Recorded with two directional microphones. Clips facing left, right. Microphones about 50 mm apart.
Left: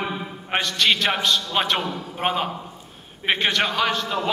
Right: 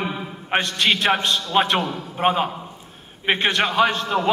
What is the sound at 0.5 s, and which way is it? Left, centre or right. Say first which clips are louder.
Speech: right 1 dB; right.